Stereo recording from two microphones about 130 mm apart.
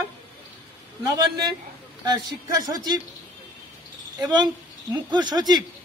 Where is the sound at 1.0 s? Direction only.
30° right (ahead or behind).